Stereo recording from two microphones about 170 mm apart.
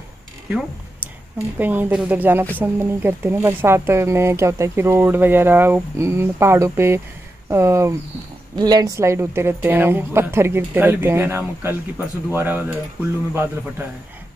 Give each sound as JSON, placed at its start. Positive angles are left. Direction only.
{"t": 1.6, "sound": "speech", "side_deg": -10}